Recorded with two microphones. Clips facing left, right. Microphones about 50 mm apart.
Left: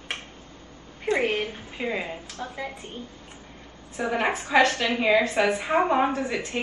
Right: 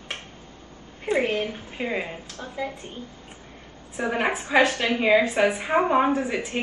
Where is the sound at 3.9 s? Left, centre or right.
Centre.